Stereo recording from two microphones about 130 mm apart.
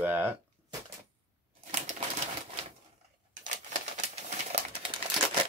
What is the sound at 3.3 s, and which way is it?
Crumpling, 75° right (ahead or behind).